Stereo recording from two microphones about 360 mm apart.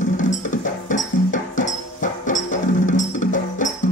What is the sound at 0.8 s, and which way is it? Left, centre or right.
Music, left.